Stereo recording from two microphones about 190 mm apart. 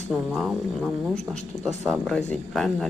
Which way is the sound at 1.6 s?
Centre (ahead or behind).